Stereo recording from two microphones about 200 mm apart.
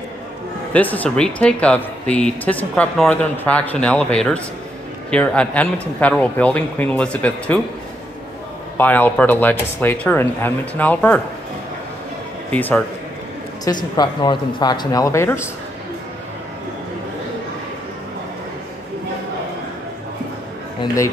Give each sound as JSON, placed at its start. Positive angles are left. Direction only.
{"t": 0.7, "sound": "speech", "side_deg": 10}
{"t": 8.7, "sound": "speech", "side_deg": 10}
{"t": 12.4, "sound": "speech", "side_deg": 10}
{"t": 13.9, "sound": "speech", "side_deg": 20}